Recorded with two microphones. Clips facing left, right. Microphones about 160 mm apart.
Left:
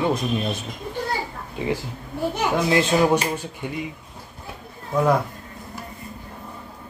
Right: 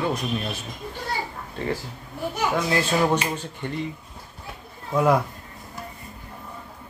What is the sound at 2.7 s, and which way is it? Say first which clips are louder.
Speech: left 5 dB; 20° left (ahead or behind).